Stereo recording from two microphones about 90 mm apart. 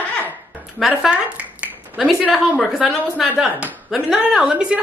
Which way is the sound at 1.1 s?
15° right (ahead or behind).